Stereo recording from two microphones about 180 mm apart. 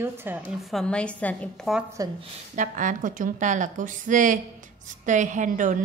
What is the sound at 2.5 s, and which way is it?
A woman's voice, 45° right (ahead or behind).